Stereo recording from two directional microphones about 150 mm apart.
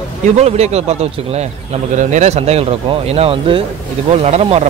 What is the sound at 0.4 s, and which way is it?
Speech, 45° right (ahead or behind).